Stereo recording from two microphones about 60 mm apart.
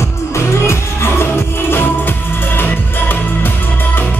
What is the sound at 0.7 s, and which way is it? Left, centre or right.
Music, left.